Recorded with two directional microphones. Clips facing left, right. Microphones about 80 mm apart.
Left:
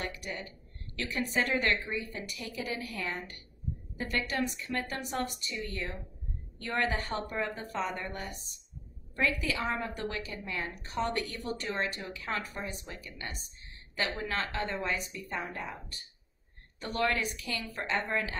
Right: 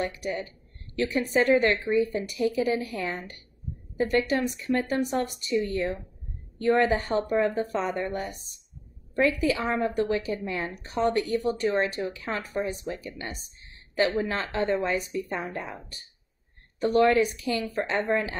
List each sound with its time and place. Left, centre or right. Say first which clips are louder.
0.0 s speech: right 8 dB; right
6.6 s speech: right 10 dB; right
16.8 s speech: right 10 dB; right